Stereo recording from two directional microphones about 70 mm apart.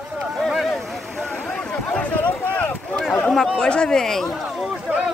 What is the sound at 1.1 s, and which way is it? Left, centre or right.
Vehicle, centre.